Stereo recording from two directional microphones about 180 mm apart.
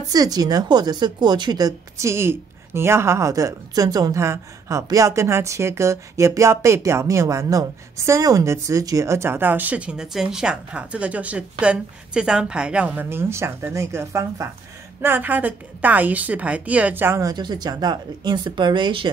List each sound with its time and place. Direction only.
0.1 s a woman's voice: 20° right (ahead or behind)